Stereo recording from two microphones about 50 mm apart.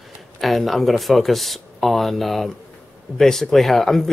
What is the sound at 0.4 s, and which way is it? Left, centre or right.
Speech, centre.